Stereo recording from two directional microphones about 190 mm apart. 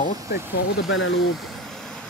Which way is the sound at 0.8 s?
90° left.